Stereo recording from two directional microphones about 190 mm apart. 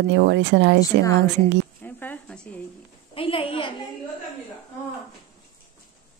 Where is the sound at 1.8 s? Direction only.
10° left (ahead or behind).